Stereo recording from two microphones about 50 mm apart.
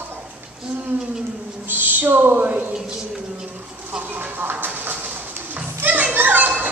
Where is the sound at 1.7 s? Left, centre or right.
Right.